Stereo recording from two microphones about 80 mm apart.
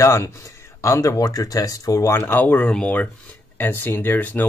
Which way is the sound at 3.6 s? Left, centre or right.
Left.